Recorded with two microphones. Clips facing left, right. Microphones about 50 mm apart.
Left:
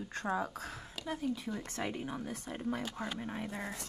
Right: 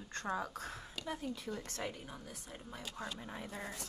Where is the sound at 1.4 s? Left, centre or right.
Left.